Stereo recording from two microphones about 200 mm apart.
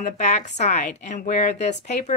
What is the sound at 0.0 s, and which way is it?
A woman's voice, 35° left (ahead or behind).